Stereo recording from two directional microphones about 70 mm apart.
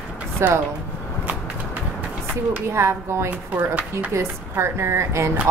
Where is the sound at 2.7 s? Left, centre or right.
Right.